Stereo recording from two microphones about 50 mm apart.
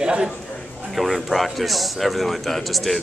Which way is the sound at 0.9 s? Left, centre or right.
Centre.